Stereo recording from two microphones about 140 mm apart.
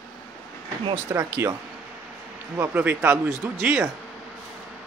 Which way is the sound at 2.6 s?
15° right (ahead or behind).